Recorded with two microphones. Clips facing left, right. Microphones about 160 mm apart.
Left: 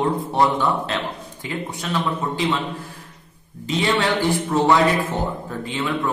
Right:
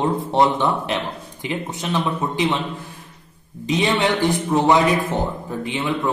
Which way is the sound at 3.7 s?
20° right (ahead or behind).